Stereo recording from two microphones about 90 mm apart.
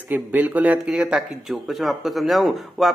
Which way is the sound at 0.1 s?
20° right (ahead or behind).